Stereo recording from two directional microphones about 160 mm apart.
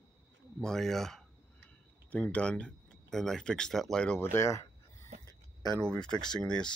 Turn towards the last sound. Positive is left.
turn(degrees=5)  # may be behind; listen again after turning